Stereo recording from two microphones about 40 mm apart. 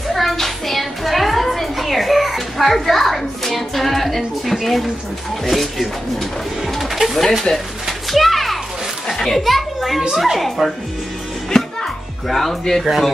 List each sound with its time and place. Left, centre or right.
0.1 s a sound: centre
5.4 s a woman's voice: centre
6.8 s pigeon: centre
7.5 s speech: left
7.8 s children playing: centre
9.2 s a child's voice: centre
11.5 s a child's voice: centre